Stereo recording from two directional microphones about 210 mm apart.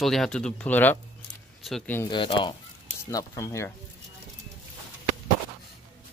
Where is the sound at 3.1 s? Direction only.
15° left (ahead or behind).